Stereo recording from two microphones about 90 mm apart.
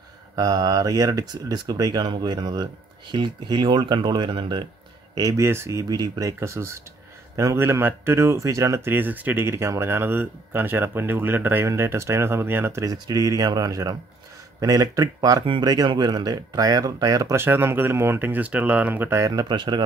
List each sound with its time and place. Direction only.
0.4 s speech: 50° right (ahead or behind)
5.4 s speech: 30° right (ahead or behind)
12.8 s speech: 45° right (ahead or behind)
17.4 s speech: 25° right (ahead or behind)
19.0 s speech: 35° right (ahead or behind)
19.5 s speech: 60° right (ahead or behind)